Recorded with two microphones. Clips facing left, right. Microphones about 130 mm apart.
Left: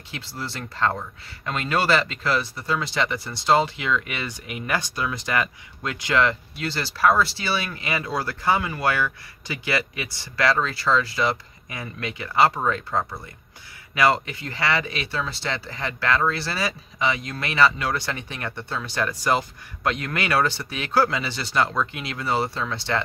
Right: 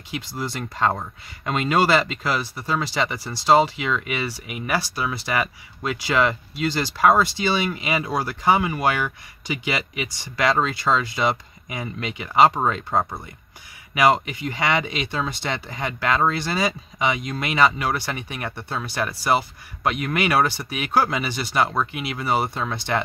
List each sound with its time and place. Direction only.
0.1 s speech: 15° right (ahead or behind)